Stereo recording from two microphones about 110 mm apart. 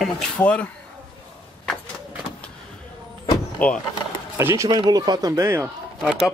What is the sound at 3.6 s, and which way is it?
Speech, 10° left (ahead or behind).